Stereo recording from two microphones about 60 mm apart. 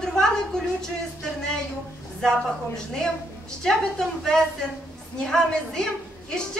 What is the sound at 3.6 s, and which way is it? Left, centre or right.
Speech, centre.